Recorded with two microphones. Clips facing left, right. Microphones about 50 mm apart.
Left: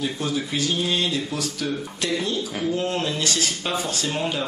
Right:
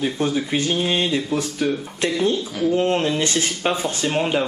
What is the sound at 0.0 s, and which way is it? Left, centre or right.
Speech, right.